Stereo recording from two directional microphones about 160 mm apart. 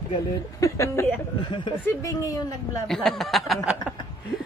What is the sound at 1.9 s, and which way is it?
Speech, 20° left (ahead or behind).